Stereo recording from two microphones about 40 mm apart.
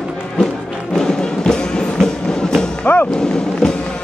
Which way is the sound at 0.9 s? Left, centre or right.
Centre.